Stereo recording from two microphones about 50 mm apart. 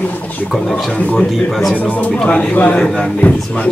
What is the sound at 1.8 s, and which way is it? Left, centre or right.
Speech, left.